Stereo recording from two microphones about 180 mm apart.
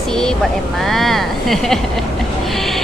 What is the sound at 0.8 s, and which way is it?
Speech, centre (ahead or behind).